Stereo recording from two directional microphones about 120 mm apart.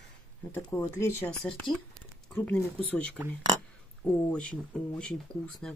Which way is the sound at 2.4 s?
10° left (ahead or behind).